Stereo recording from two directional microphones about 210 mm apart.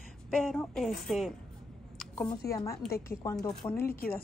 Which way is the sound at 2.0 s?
5° left (ahead or behind).